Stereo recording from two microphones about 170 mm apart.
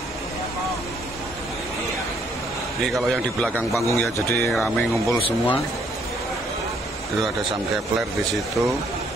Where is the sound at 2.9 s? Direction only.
5° left (ahead or behind).